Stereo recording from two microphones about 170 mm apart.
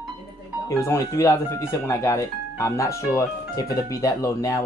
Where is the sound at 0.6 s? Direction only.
20° left (ahead or behind).